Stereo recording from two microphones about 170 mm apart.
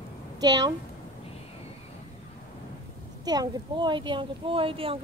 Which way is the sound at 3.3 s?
25° right (ahead or behind).